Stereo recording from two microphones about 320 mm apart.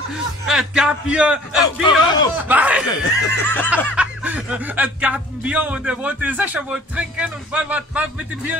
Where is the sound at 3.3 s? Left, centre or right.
Centre.